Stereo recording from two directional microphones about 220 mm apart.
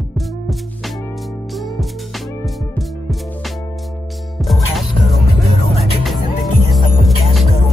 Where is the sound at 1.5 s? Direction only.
Centre (ahead or behind).